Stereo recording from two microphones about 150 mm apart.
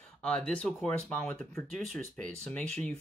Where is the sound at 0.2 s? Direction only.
5° left (ahead or behind).